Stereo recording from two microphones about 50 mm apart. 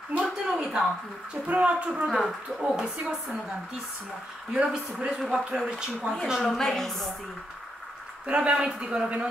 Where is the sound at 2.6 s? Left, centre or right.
Centre.